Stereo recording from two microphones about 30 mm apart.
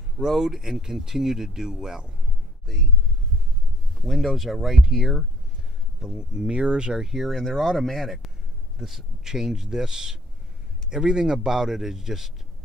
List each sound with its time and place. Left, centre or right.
0.3 s speech: centre
2.6 s a sound: centre
3.9 s a sound: centre
4.2 s speech: centre
6.1 s speech: right
6.9 s speech: centre
7.2 s speech: centre